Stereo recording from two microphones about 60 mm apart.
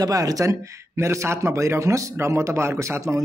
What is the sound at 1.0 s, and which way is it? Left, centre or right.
A man's voice, right.